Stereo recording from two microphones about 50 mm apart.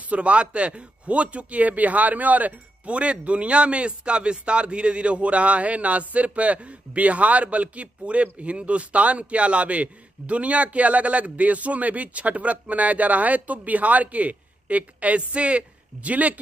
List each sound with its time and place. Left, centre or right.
0.1 s speech: right